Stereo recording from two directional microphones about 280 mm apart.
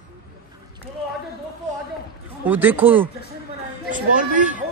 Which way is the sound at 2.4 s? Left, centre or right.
Centre.